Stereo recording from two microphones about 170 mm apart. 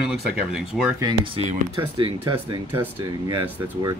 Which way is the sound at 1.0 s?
30° right (ahead or behind).